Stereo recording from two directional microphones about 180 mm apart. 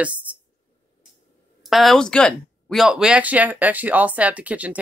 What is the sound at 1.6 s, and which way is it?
Speech, centre (ahead or behind).